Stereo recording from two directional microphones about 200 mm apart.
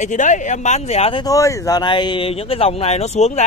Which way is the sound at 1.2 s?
15° left (ahead or behind).